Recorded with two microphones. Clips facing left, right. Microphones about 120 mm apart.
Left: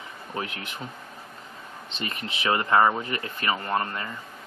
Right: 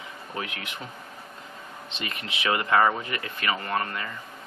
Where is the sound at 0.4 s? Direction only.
40° left (ahead or behind).